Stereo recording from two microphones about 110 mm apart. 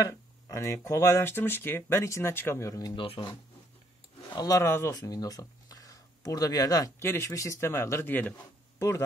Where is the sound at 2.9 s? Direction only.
55° left (ahead or behind).